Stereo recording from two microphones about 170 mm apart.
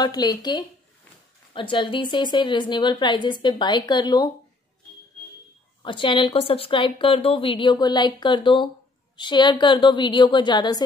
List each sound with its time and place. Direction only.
0.0 s a woman's voice: 25° left (ahead or behind)
5.8 s a woman's voice: 30° left (ahead or behind)